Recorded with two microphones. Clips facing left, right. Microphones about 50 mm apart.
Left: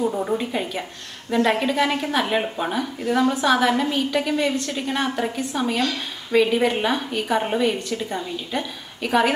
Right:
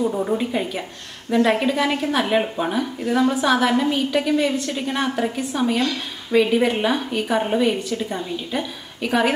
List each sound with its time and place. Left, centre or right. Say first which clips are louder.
0.0 s a woman's voice: right 1 dB; centre